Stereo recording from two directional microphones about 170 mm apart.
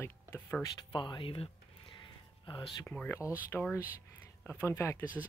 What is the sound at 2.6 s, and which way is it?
Speech, 5° left (ahead or behind).